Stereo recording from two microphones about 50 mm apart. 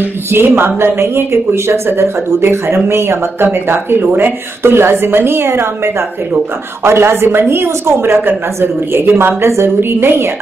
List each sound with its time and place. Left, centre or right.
0.0 s a woman's voice: right
9.5 s speech: right